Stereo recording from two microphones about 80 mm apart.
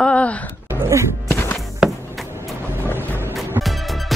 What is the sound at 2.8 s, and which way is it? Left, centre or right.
Music, left.